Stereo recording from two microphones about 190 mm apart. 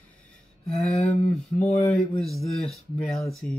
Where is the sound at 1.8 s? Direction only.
Centre (ahead or behind).